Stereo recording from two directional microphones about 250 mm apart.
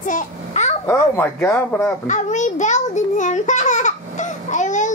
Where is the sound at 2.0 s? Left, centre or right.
Left.